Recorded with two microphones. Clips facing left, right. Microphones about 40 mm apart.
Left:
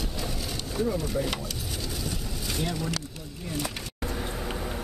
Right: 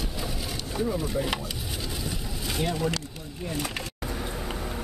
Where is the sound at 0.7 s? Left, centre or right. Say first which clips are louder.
Even; centre.